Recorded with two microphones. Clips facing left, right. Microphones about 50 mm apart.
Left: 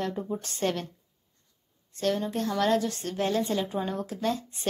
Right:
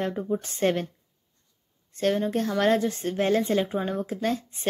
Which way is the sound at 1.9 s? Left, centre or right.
Right.